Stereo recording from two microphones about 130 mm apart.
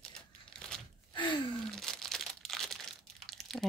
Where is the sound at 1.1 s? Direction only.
35° left (ahead or behind).